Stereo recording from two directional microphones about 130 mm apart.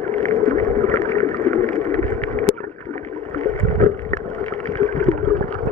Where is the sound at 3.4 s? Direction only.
45° right (ahead or behind).